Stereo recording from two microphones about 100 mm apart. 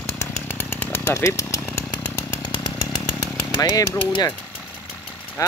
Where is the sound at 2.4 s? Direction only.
45° left (ahead or behind).